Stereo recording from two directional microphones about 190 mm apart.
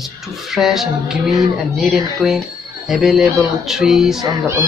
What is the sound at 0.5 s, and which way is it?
Speech, centre (ahead or behind).